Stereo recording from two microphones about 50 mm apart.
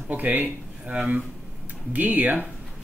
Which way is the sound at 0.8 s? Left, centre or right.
Right.